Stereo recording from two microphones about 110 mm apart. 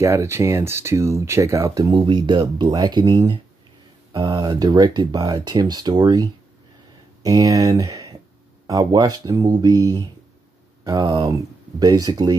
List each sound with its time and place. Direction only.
0.0 s speech: 25° right (ahead or behind)
2.0 s speech: 45° right (ahead or behind)